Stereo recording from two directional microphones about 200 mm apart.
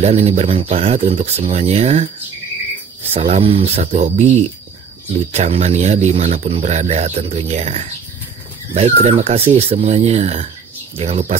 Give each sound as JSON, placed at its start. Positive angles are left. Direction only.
{"t": 0.0, "sound": "speech", "side_deg": -30}
{"t": 3.1, "sound": "speech", "side_deg": -30}
{"t": 5.3, "sound": "speech", "side_deg": -35}